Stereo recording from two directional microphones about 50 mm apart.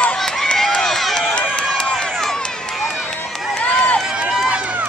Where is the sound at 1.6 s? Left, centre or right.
Centre.